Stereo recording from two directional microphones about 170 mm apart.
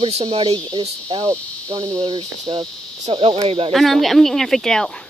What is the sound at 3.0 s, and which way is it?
Speech, 35° right (ahead or behind).